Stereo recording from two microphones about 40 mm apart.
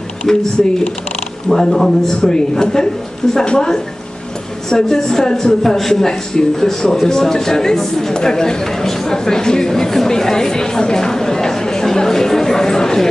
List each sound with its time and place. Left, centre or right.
0.3 s a man's voice: centre
1.5 s a man's voice: centre